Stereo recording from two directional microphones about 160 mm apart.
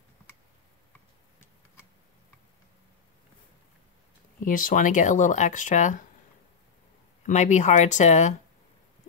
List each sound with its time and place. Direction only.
4.5 s speech: 55° left (ahead or behind)
7.2 s speech: 50° left (ahead or behind)